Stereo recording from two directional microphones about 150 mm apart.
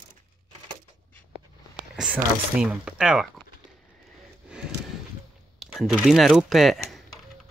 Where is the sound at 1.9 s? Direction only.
5° right (ahead or behind).